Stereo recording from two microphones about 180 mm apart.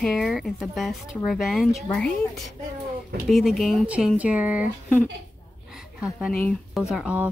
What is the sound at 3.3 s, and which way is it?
Speech, centre (ahead or behind).